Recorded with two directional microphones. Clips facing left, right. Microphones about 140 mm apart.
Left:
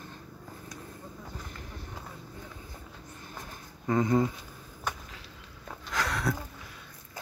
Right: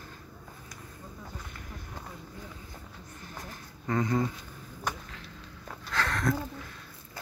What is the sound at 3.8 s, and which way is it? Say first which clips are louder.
Speech: left 3 dB; 20° left (ahead or behind).